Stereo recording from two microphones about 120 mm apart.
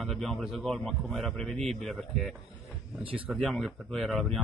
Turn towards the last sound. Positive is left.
turn(degrees=0)  # may be behind; listen again after turning